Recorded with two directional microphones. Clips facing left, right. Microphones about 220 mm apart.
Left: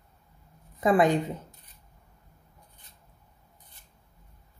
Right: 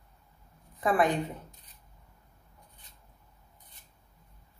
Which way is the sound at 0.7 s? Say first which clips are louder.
Left 4 dB; 20° left (ahead or behind).